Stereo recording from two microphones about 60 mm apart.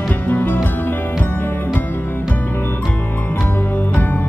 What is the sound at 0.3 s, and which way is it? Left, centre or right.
Music, left.